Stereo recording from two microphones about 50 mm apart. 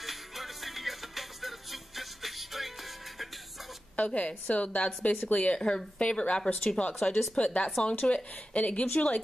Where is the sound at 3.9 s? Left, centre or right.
Left.